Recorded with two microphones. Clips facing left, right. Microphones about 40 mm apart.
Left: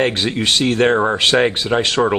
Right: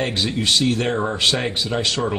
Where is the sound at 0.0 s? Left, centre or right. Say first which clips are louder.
Left 4 dB; left.